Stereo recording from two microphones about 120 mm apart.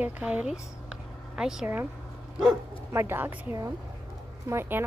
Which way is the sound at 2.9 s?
20° right (ahead or behind).